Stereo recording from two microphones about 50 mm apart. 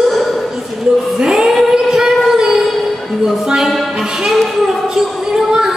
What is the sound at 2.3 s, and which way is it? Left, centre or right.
Music, centre.